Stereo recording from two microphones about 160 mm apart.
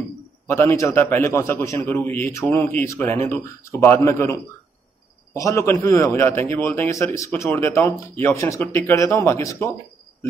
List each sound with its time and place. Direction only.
0.5 s a man's voice: 15° left (ahead or behind)